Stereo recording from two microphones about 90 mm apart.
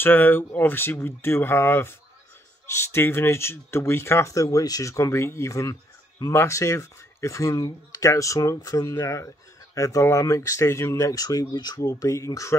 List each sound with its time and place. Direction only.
0.0 s speech: 20° left (ahead or behind); by 11.9 s 50° left (ahead or behind)
11.9 s speech: 35° left (ahead or behind)